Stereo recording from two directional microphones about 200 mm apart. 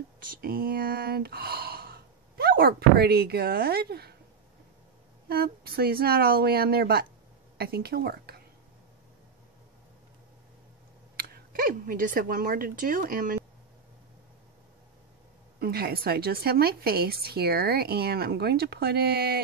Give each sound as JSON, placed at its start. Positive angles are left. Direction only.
{"t": 0.2, "sound": "speech", "side_deg": -45}
{"t": 5.3, "sound": "a woman's voice", "side_deg": -50}
{"t": 11.1, "sound": "speech", "side_deg": -50}
{"t": 15.6, "sound": "a woman's voice", "side_deg": -50}